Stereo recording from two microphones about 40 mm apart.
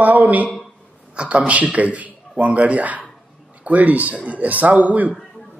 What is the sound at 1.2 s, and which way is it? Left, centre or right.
A man's voice, right.